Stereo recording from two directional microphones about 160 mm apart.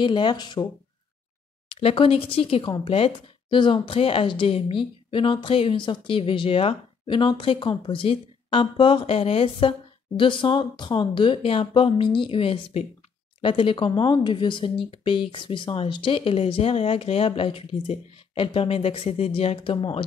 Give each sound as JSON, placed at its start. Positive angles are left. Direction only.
{"t": 0.0, "sound": "speech", "side_deg": 30}
{"t": 1.7, "sound": "speech", "side_deg": 35}